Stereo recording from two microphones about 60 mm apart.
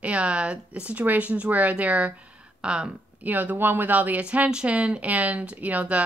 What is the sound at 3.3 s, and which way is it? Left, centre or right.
Speech, right.